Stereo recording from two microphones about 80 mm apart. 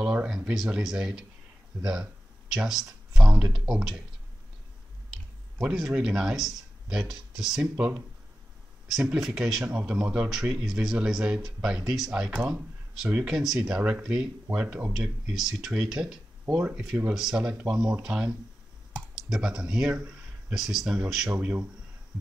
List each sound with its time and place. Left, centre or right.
0.0 s speech: centre
2.5 s a sound: centre
3.5 s speech: centre
5.6 s speech: centre
7.7 s speech: centre
13.4 s speech: centre
13.7 s speech: centre